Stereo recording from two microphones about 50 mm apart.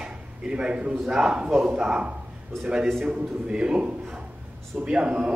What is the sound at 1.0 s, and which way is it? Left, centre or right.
Speech, centre.